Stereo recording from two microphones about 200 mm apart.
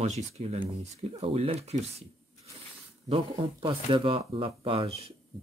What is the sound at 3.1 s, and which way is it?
Speech, 30° right (ahead or behind).